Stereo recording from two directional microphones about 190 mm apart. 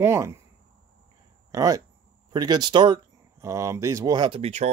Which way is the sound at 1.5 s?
20° right (ahead or behind).